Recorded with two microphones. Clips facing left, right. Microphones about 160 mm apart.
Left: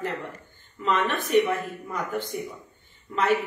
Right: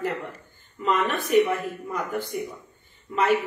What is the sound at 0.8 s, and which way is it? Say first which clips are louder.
A man's voice: right 1 dB; 10° right (ahead or behind).